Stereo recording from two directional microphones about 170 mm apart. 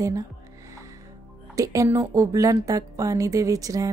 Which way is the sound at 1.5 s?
20° right (ahead or behind).